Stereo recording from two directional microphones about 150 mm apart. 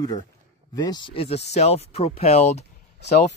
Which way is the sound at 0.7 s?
30° left (ahead or behind).